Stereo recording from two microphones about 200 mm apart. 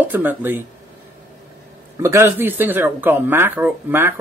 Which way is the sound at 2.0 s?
15° right (ahead or behind).